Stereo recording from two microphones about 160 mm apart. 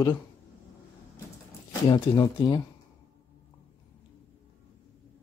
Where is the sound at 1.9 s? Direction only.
25° left (ahead or behind).